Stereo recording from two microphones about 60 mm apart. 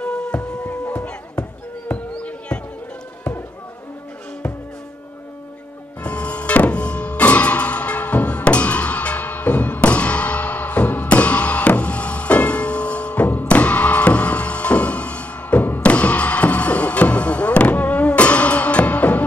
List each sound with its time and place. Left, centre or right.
0.0 s music: centre
1.9 s a sound: left
6.0 s music: left